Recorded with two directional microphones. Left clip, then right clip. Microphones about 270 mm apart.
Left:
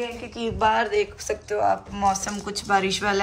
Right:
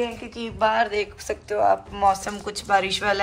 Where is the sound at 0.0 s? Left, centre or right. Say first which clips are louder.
Right 1 dB; centre.